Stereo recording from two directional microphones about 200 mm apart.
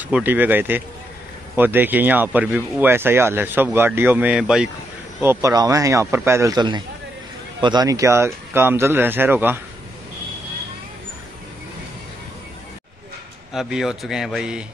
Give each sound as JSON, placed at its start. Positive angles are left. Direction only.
{"t": 0.0, "sound": "speech", "side_deg": -10}
{"t": 13.5, "sound": "a man's voice", "side_deg": 0}